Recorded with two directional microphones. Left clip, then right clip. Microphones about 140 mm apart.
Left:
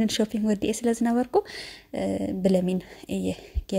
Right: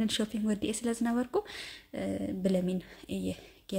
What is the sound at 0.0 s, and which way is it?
A woman's voice, 35° left (ahead or behind).